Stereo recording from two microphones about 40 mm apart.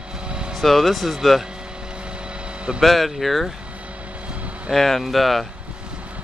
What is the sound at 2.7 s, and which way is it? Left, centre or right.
Speech, centre.